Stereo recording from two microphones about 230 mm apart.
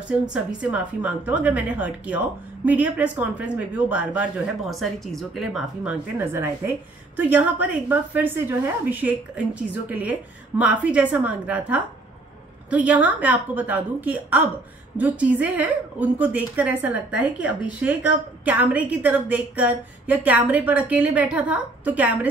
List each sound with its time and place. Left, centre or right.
0.3 s a woman's voice: centre